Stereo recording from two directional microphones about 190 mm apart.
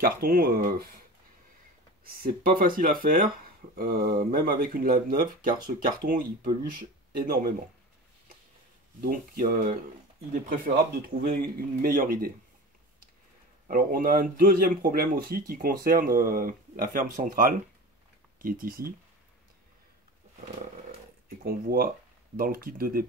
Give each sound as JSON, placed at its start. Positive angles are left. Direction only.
{"t": 0.0, "sound": "speech", "side_deg": -50}
{"t": 2.0, "sound": "speech", "side_deg": -50}
{"t": 9.0, "sound": "speech", "side_deg": -50}
{"t": 11.1, "sound": "speech", "side_deg": -50}
{"t": 13.7, "sound": "speech", "side_deg": -45}
{"t": 21.5, "sound": "speech", "side_deg": -50}